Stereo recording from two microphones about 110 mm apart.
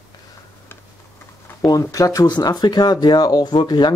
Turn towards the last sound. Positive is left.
turn(degrees=40)  # may be behind; listen again after turning